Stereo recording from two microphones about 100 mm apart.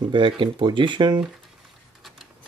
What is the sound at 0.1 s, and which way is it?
Speech, 55° right (ahead or behind).